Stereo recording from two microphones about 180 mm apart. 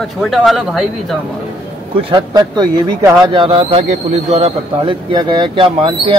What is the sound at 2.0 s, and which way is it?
Speech, 25° right (ahead or behind).